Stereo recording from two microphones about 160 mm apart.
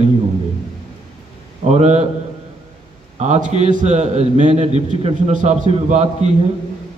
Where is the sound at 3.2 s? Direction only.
45° right (ahead or behind).